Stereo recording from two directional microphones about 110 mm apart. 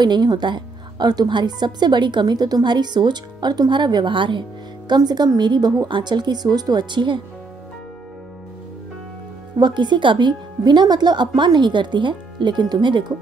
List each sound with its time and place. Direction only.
0.0 s a woman's voice: 40° right (ahead or behind)
9.6 s speech: 40° right (ahead or behind)